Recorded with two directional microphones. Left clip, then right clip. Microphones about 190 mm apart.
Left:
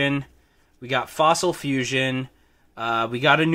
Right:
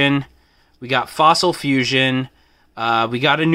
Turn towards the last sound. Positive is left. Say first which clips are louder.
# right 2 dB
turn(degrees=-15)  # may be behind; listen again after turning